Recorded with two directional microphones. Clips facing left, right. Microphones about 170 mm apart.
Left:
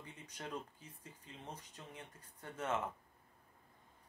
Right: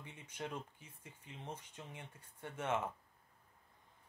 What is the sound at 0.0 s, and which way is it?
Speech, 20° right (ahead or behind).